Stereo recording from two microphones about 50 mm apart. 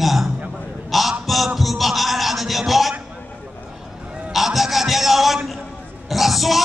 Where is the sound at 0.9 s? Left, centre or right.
Centre.